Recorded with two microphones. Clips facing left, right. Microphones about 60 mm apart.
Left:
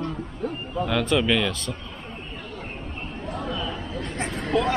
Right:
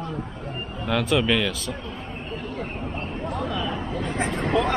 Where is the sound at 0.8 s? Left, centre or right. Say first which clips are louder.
Right 1 dB; centre.